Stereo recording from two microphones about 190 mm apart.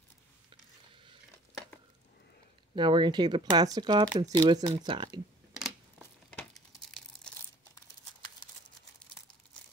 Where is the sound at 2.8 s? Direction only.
25° right (ahead or behind).